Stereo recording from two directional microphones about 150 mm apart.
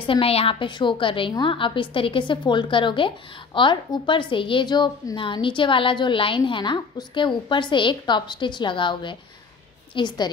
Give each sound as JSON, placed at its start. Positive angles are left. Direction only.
{"t": 0.0, "sound": "a woman's voice", "side_deg": 35}